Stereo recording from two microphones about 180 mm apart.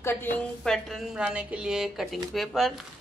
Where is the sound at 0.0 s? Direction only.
10° left (ahead or behind).